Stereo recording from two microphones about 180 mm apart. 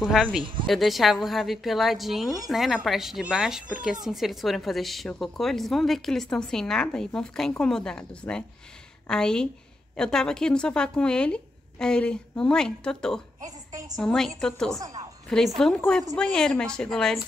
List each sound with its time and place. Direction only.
0.0 s speech: 5° right (ahead or behind)
0.4 s speech: 30° right (ahead or behind)
0.7 s speech: centre (ahead or behind)
13.4 s a sound: 20° right (ahead or behind)
13.9 s speech: 5° left (ahead or behind)
14.8 s a woman's voice: 20° right (ahead or behind)
15.2 s speech: centre (ahead or behind)